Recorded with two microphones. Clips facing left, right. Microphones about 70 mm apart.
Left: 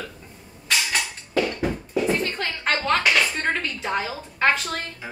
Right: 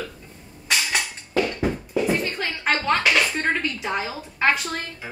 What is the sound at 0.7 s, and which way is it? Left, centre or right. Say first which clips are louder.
Music: even; centre.